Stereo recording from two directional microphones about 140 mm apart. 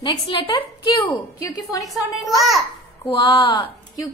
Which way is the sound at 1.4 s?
25° left (ahead or behind).